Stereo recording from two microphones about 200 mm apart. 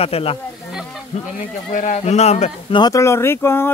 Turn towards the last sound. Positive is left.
turn(degrees=10)  # may be behind; listen again after turning